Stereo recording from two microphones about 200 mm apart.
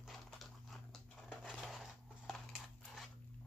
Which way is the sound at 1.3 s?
Centre (ahead or behind).